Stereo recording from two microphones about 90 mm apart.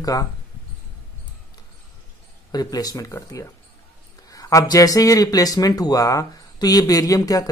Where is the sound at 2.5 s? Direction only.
45° left (ahead or behind).